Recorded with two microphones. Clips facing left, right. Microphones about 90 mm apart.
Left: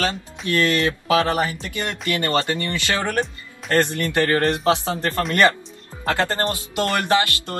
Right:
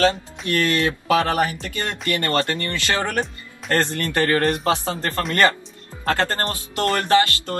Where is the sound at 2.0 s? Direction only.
20° left (ahead or behind).